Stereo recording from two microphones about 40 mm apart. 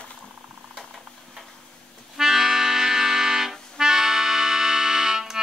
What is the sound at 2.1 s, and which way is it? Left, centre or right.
Accordion, centre.